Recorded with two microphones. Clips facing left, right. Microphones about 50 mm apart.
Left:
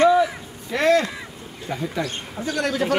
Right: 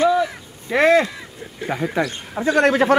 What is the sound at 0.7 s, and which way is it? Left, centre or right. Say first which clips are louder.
Speech: right 4 dB; right.